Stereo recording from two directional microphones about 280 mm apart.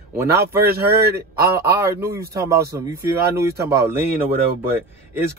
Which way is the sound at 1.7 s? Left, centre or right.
Centre.